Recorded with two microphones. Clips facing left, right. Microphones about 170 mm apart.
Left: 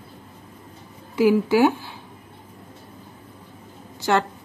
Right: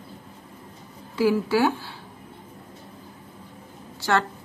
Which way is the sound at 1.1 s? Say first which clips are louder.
Left 4 dB; 15° left (ahead or behind).